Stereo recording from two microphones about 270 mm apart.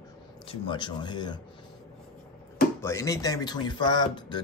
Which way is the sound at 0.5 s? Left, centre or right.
Centre.